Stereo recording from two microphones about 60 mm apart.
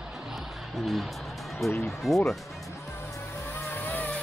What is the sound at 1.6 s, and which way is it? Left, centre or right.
Speech, centre.